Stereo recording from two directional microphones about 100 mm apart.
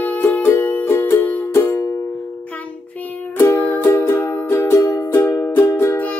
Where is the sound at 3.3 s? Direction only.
20° left (ahead or behind).